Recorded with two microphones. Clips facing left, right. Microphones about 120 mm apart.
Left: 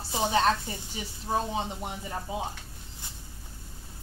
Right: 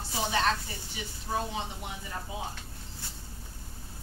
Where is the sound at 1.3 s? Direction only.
30° left (ahead or behind).